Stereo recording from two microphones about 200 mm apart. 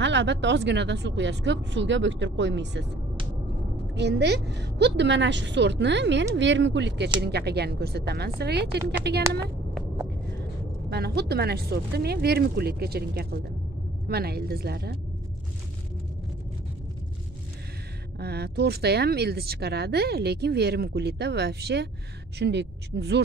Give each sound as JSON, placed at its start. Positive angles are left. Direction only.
{"t": 0.0, "sound": "speech", "side_deg": -60}
{"t": 3.9, "sound": "speech", "side_deg": -55}
{"t": 10.9, "sound": "speech", "side_deg": -55}
{"t": 18.2, "sound": "speech", "side_deg": -55}